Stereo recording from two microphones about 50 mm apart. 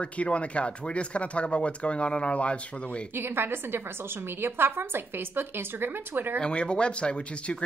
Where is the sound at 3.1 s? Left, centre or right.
Right.